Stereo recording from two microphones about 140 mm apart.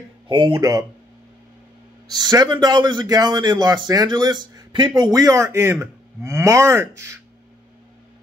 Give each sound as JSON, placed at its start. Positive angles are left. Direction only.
{"t": 0.3, "sound": "speech", "side_deg": -35}
{"t": 2.1, "sound": "speech", "side_deg": -30}